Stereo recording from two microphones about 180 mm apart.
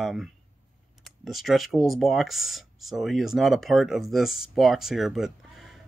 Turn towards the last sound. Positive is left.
turn(degrees=0)  # may be behind; listen again after turning